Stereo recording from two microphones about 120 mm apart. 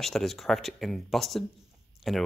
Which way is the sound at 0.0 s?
Centre (ahead or behind).